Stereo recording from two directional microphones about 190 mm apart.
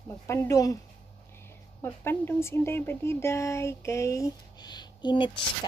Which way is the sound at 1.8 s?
10° left (ahead or behind).